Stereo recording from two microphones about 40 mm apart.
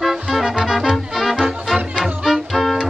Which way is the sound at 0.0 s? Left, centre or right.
Centre.